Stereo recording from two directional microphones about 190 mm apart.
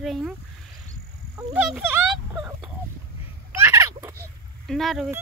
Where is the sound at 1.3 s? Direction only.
5° right (ahead or behind).